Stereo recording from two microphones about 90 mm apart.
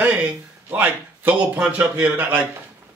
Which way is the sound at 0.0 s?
15° right (ahead or behind).